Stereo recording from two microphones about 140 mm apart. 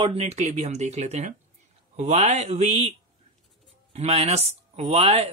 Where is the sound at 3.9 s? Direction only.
45° right (ahead or behind).